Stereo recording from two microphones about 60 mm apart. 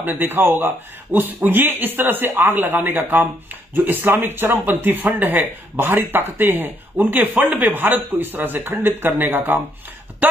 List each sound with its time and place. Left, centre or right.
0.0 s speech: right